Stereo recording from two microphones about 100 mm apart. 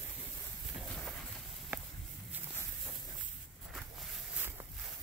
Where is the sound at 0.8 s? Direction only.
Centre (ahead or behind).